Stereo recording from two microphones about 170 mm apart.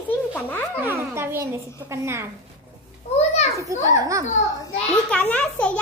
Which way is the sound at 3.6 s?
20° right (ahead or behind).